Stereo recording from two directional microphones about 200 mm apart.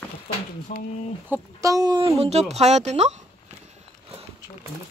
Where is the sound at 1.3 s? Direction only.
15° right (ahead or behind); by 3.8 s 35° right (ahead or behind).